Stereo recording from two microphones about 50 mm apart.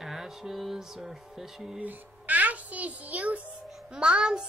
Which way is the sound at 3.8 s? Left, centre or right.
Centre.